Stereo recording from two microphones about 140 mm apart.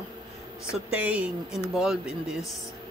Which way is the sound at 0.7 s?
10° right (ahead or behind).